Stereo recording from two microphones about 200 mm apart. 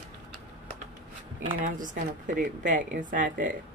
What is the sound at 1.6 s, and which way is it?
A woman's voice, 45° right (ahead or behind).